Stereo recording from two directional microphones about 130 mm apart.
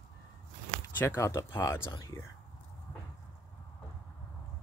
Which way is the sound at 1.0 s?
20° left (ahead or behind).